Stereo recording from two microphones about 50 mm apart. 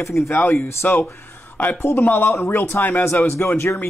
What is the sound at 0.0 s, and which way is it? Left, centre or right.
Speech, left.